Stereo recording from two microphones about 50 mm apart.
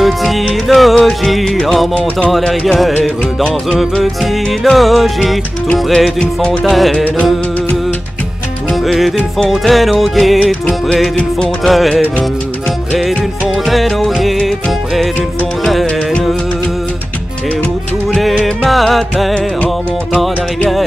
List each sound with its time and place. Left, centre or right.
0.0 s music: centre
3.4 s music: centre
4.0 s music: centre
6.1 s music: left
6.6 s music: centre
8.8 s music: centre
11.6 s music: centre
13.7 s music: centre
15.6 s music: centre
18.3 s music: centre